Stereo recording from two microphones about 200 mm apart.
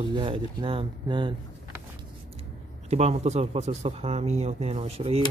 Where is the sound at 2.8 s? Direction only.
35° right (ahead or behind).